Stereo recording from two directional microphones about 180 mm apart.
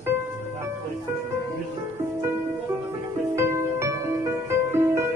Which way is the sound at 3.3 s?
15° right (ahead or behind).